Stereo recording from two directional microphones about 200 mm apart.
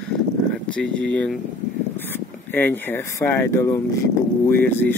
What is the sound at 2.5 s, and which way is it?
Speech, 10° left (ahead or behind).